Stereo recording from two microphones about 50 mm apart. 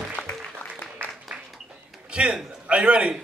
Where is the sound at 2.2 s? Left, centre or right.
Right.